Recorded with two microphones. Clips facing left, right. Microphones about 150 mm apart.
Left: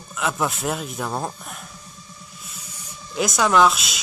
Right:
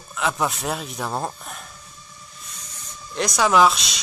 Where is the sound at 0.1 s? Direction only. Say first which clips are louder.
Even; centre (ahead or behind).